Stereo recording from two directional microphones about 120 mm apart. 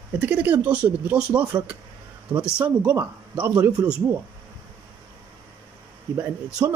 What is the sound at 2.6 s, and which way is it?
Speech, 15° right (ahead or behind).